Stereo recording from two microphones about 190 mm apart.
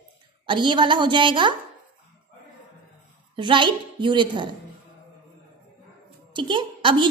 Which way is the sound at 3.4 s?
25° right (ahead or behind).